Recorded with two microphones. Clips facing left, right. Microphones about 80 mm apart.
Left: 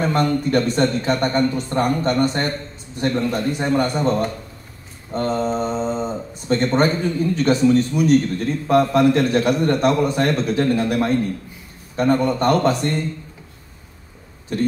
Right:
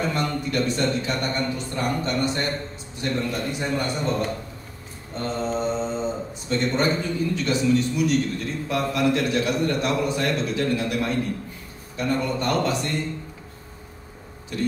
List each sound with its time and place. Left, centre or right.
0.0 s a man's voice: left
5.6 s mantra: left
6.5 s a man's voice: left
14.5 s a man's voice: left